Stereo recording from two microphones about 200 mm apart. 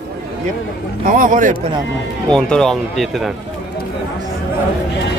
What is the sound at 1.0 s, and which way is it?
Speech, 40° right (ahead or behind).